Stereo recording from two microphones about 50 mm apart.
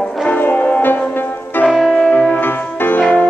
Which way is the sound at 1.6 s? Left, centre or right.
Centre.